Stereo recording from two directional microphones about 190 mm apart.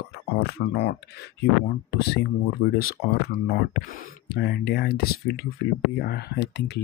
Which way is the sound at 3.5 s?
55° left (ahead or behind).